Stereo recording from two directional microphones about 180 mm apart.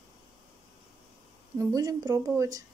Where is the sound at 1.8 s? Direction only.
20° right (ahead or behind).